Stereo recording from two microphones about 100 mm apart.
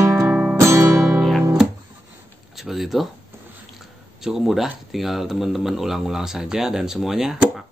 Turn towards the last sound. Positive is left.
turn(degrees=-5)  # may be behind; listen again after turning